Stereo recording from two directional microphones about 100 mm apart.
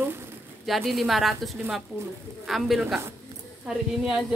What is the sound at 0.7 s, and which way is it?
A woman's voice, centre (ahead or behind).